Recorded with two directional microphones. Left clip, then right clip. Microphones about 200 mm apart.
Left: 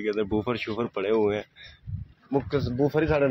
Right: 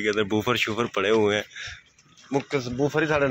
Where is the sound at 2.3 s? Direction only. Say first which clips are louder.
Right 1 dB; 15° left (ahead or behind).